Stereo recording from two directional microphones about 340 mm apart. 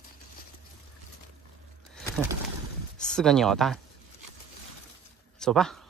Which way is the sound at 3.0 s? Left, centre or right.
Centre.